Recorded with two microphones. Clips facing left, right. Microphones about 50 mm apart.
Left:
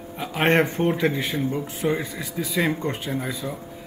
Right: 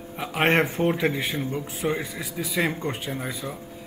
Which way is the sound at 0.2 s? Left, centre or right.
Centre.